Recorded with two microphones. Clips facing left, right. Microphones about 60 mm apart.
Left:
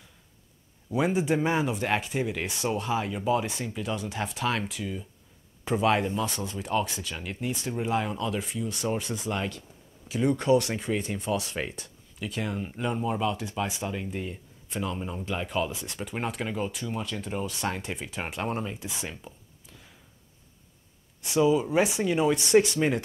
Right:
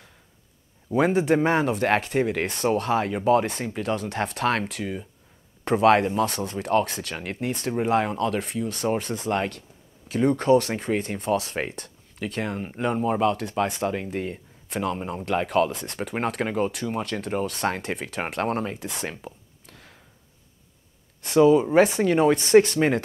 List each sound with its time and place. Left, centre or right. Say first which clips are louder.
0.9 s speech: right 5 dB; right
7.2 s speech: right 4 dB; right
13.2 s speech: right 6 dB; right
15.4 s speech: right 7 dB; right
17.0 s speech: right 5 dB; right
17.4 s speech: right 5 dB; right
19.6 s a sound: right 4 dB; right
21.4 s speech: right 6 dB; right